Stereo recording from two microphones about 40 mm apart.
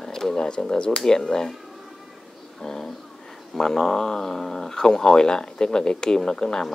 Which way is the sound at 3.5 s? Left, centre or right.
Centre.